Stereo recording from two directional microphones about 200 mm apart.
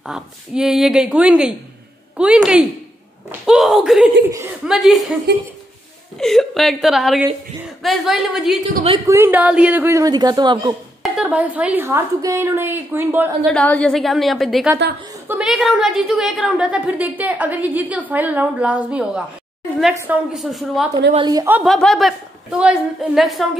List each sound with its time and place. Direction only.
0.0 s a woman's voice: centre (ahead or behind)
6.1 s a woman's voice: centre (ahead or behind)
9.0 s a woman's voice: 10° right (ahead or behind)
11.0 s a woman's voice: 5° right (ahead or behind)
13.5 s a woman's voice: 5° left (ahead or behind)
20.3 s a woman's voice: centre (ahead or behind)
21.1 s a woman's voice: 20° right (ahead or behind)
21.5 s a woman's voice: centre (ahead or behind)